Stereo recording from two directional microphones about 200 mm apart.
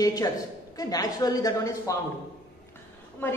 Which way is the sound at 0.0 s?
20° left (ahead or behind).